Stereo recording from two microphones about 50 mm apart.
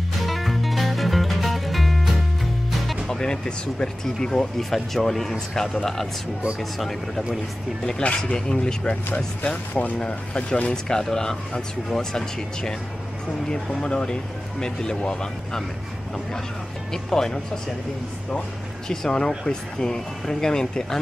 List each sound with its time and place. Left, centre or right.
0.2 s music: centre
3.1 s speech: centre
4.6 s speech: centre
6.8 s speech: centre
8.0 s speech: left
9.1 s speech: left
16.9 s speech: centre
18.9 s speech: centre